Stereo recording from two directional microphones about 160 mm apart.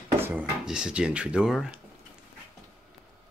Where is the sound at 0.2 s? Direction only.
10° right (ahead or behind).